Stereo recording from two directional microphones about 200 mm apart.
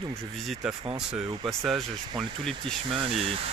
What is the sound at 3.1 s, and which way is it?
Speech, 30° right (ahead or behind).